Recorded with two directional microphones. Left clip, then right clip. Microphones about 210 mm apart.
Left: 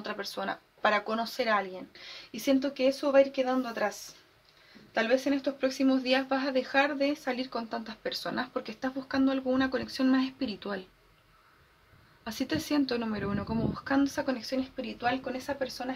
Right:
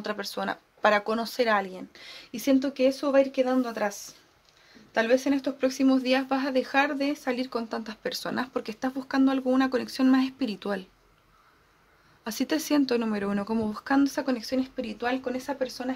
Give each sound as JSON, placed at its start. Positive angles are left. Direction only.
{"t": 0.0, "sound": "speech", "side_deg": -50}
{"t": 4.9, "sound": "speech", "side_deg": -55}
{"t": 12.3, "sound": "speech", "side_deg": -55}